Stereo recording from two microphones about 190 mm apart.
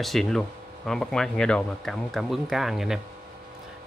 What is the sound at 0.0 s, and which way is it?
Speech, centre (ahead or behind).